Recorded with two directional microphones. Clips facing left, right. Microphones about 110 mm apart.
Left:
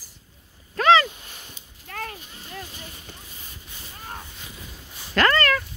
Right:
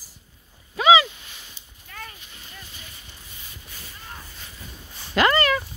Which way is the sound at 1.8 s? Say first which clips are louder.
Left 6 dB; 65° left (ahead or behind).